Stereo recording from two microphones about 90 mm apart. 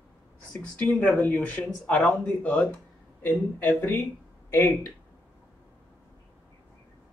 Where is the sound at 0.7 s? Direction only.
15° left (ahead or behind).